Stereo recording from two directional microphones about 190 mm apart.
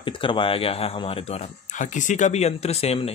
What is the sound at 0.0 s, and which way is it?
Speech, 25° left (ahead or behind).